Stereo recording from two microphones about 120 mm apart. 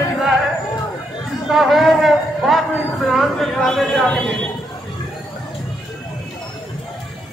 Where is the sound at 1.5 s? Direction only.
Centre (ahead or behind).